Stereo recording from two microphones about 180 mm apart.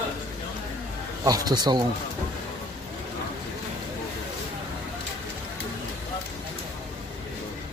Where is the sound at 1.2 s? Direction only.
20° right (ahead or behind).